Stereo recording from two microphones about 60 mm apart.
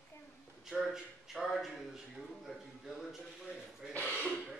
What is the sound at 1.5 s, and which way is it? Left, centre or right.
A man's voice, centre.